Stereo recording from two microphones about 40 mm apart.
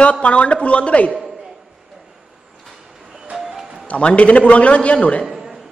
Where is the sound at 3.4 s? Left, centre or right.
Centre.